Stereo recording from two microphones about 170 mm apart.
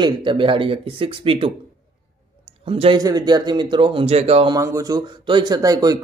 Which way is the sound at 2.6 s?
35° right (ahead or behind).